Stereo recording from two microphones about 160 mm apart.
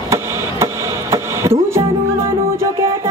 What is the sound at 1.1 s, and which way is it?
Music, 15° right (ahead or behind).